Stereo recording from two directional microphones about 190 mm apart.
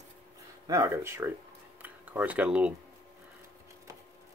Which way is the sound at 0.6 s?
15° right (ahead or behind).